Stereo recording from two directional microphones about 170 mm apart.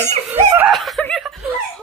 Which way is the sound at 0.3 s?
15° right (ahead or behind).